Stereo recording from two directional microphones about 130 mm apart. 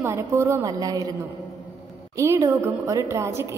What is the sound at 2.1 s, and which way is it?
A woman's voice, 20° right (ahead or behind).